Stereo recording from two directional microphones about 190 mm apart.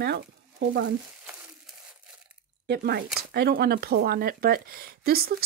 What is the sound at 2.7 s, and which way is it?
Speech, 55° right (ahead or behind).